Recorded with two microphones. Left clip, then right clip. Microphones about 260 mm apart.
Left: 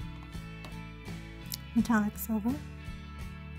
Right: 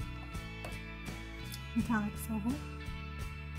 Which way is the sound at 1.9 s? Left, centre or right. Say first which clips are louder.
Left 5 dB; left.